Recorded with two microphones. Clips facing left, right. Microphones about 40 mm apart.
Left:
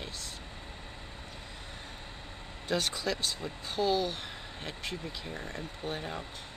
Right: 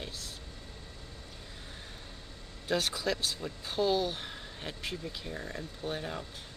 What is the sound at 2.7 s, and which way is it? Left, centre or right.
Speech, centre.